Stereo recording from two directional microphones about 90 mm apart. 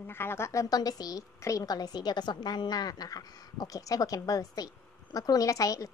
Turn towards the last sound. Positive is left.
turn(degrees=40)  # may be behind; listen again after turning